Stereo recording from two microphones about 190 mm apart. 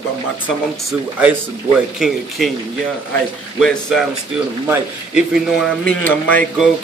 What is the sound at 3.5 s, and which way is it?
A man's voice, centre (ahead or behind).